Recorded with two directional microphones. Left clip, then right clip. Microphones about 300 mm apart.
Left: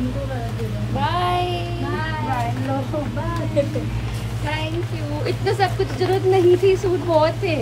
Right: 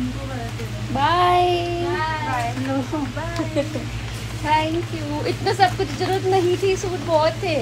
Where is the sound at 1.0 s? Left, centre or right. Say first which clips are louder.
Right 5 dB; right.